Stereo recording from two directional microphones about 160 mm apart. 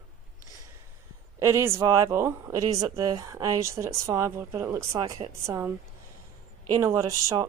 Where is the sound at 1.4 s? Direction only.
15° right (ahead or behind).